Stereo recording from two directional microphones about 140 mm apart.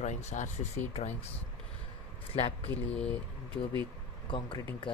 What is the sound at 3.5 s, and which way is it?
Speech, 40° left (ahead or behind).